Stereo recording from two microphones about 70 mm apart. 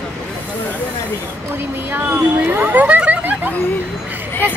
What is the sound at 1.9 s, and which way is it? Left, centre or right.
Speech, right.